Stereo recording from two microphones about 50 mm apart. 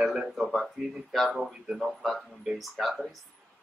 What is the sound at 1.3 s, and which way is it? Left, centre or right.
Speech, centre.